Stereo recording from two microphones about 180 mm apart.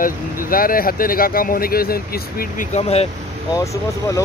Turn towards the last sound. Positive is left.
turn(degrees=15)  # may be behind; listen again after turning